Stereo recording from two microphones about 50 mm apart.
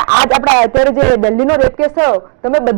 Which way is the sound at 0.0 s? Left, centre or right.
Centre.